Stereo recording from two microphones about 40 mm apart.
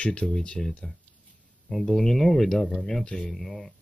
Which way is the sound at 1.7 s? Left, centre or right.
Centre.